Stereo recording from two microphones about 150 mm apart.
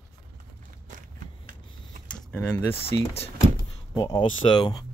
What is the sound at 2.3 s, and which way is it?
Speech, 15° left (ahead or behind).